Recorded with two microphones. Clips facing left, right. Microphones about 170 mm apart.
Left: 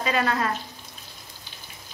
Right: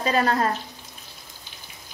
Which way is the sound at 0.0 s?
40° right (ahead or behind).